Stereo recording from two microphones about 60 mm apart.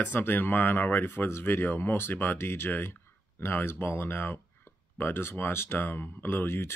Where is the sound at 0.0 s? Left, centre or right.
Left.